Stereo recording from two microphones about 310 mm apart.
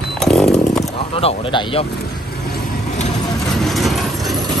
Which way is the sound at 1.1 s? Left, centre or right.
Centre.